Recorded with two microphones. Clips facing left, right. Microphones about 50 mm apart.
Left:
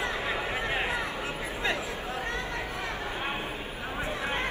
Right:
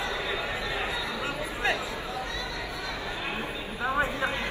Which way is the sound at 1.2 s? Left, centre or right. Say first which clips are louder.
Right 2 dB; right.